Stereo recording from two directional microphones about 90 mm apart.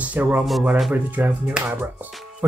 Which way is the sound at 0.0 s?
20° right (ahead or behind).